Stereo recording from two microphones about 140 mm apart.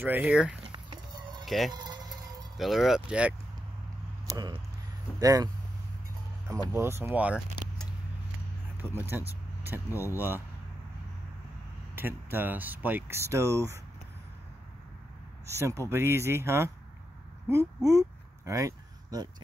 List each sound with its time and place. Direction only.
0.0 s speech: 10° right (ahead or behind)
0.7 s a sound: 35° right (ahead or behind)
1.4 s a sound: centre (ahead or behind)
1.7 s insect: 30° right (ahead or behind)
2.5 s speech: centre (ahead or behind)
4.3 s a sound: 30° right (ahead or behind)
5.2 s speech: 25° right (ahead or behind)
6.7 s speech: 15° right (ahead or behind)
8.7 s speech: 15° right (ahead or behind)
11.9 s speech: 15° right (ahead or behind)
15.4 s speech: 20° right (ahead or behind)